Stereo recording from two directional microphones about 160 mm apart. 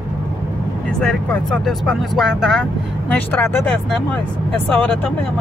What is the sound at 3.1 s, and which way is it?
Speech, 10° left (ahead or behind).